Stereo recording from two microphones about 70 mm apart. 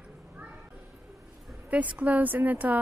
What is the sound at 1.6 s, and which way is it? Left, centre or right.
A woman's voice, right.